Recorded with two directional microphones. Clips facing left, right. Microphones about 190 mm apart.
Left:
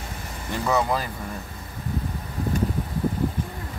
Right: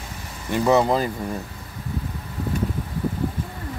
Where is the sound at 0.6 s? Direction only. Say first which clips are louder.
Right 5 dB; 25° right (ahead or behind).